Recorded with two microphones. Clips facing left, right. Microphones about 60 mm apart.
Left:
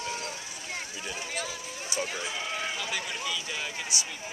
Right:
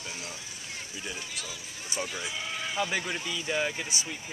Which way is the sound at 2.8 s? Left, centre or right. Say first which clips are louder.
Right 3 dB; right.